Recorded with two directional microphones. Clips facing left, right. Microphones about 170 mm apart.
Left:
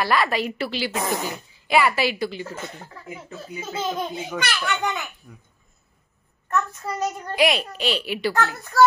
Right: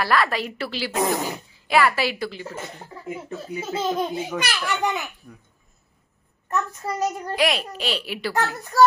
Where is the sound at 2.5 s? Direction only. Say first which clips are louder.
Even; 20° right (ahead or behind).